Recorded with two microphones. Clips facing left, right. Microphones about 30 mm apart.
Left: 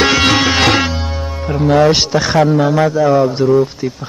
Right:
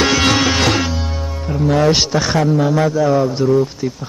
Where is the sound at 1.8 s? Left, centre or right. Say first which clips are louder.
Left 3 dB; centre.